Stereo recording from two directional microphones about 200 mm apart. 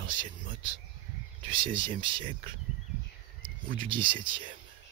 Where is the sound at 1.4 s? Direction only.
25° right (ahead or behind).